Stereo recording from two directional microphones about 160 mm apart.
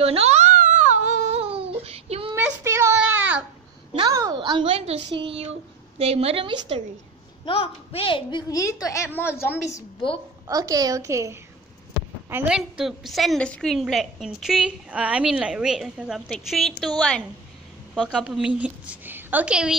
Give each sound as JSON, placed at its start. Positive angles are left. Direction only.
{"t": 0.0, "sound": "a sound", "side_deg": -40}
{"t": 2.3, "sound": "a sound", "side_deg": -15}
{"t": 3.9, "sound": "a woman's voice", "side_deg": -25}
{"t": 7.4, "sound": "a woman's voice", "side_deg": 35}
{"t": 10.5, "sound": "a woman's voice", "side_deg": -25}
{"t": 18.0, "sound": "a woman's voice", "side_deg": -5}